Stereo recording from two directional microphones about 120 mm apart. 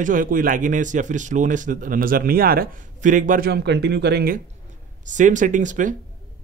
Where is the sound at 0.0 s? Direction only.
90° right.